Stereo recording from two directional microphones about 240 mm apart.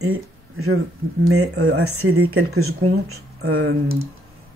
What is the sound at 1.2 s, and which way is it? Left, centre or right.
Speech, right.